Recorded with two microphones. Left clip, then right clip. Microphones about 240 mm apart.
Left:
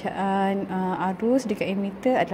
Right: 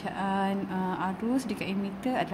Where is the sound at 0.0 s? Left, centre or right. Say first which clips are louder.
Left 5 dB; centre.